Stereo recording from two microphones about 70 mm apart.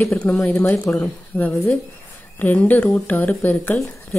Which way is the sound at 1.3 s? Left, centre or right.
Left.